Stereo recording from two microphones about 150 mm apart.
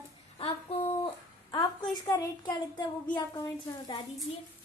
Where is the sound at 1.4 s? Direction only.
30° left (ahead or behind).